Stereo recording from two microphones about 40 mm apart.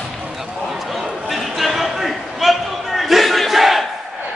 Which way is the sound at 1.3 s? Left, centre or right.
Centre.